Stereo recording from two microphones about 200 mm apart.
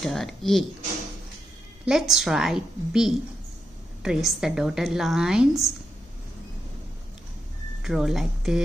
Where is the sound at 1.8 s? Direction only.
Centre (ahead or behind).